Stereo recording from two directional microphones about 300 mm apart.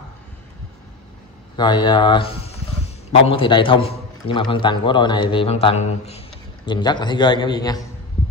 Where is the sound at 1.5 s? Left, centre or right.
Centre.